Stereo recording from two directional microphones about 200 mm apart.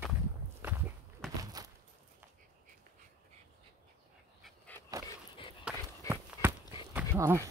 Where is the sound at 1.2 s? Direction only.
Centre (ahead or behind).